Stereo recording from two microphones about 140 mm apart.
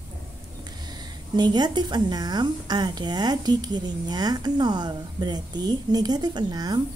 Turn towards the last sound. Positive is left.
turn(degrees=-30)  # may be behind; listen again after turning